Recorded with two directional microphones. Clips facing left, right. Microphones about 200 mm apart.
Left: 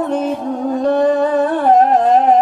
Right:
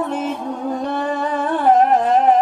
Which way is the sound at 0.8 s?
35° left (ahead or behind).